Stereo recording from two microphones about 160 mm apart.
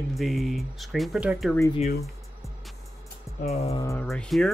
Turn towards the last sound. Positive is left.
turn(degrees=5)  # may be behind; listen again after turning